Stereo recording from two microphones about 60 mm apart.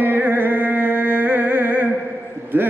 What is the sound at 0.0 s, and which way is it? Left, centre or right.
Music, right.